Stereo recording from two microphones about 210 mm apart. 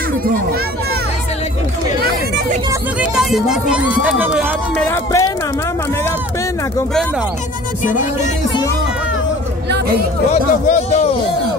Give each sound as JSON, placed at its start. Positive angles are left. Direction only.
{"t": 3.2, "sound": "speech", "side_deg": 0}
{"t": 10.3, "sound": "a man's voice", "side_deg": 30}